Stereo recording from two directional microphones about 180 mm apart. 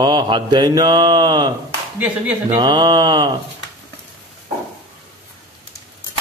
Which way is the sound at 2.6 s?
25° right (ahead or behind).